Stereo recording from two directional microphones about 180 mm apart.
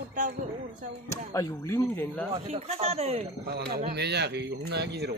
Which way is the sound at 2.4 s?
35° right (ahead or behind).